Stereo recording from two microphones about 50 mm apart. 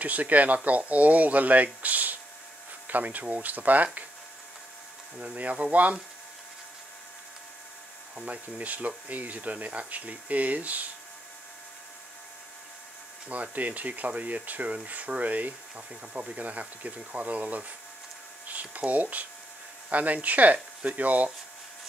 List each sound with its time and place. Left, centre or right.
0.0 s speech: right
5.2 s speech: right
8.3 s speech: right
13.3 s speech: right